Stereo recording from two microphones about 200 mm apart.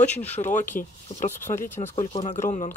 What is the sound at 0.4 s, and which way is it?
Speech, 40° left (ahead or behind).